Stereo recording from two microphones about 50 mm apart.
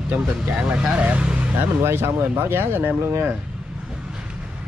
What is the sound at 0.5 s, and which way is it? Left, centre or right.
Speech, centre.